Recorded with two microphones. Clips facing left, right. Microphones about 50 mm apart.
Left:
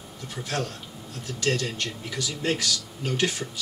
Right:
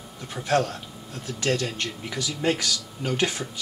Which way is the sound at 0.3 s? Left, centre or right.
Right.